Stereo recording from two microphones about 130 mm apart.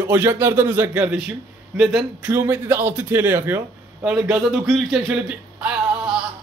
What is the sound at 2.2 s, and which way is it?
A man's voice, 15° right (ahead or behind).